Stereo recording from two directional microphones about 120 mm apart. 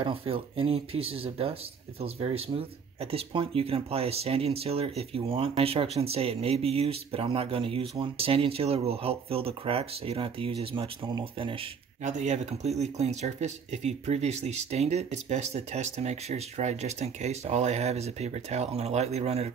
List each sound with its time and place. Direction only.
0.0 s speech: 50° right (ahead or behind)
12.0 s speech: 85° right; by 19.5 s 65° right (ahead or behind)